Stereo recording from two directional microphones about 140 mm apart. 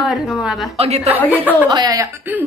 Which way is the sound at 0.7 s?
50° right (ahead or behind).